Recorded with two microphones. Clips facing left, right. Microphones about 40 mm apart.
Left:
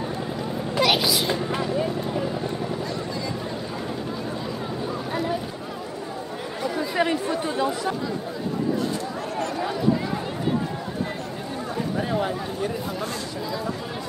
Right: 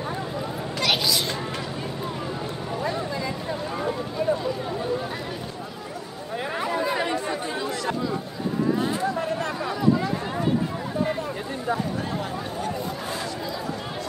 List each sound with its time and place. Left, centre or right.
0.7 s vehicle: centre
6.6 s chatter: right
7.2 s chatter: centre
12.1 s a sound: centre